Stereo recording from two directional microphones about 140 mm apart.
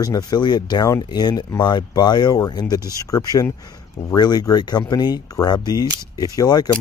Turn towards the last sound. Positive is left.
turn(degrees=30)  # may be behind; listen again after turning